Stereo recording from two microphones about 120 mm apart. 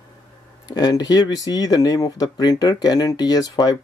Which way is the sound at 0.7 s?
35° left (ahead or behind).